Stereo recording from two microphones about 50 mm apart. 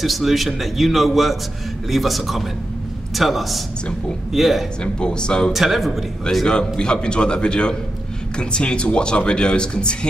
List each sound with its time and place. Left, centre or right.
0.0 s a man's voice: centre
4.8 s speech: centre
5.5 s a man's voice: centre
6.4 s speech: centre